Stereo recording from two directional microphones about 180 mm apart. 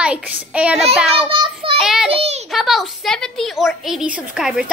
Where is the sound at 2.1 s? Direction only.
30° right (ahead or behind).